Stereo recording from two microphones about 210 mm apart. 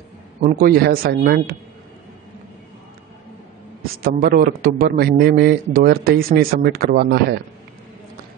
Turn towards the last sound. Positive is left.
turn(degrees=-50)  # may be behind; listen again after turning